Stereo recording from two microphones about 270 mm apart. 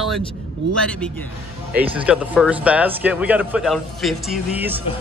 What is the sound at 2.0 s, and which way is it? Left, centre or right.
Speech, centre.